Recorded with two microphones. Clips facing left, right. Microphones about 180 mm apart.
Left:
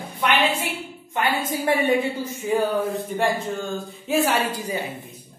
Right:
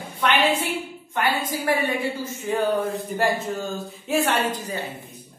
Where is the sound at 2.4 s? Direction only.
5° left (ahead or behind).